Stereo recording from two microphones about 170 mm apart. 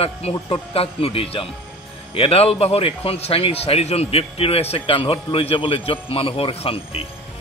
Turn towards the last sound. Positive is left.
turn(degrees=35)  # may be behind; listen again after turning